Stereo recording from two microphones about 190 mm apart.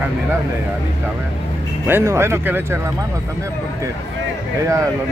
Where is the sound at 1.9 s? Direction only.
10° right (ahead or behind).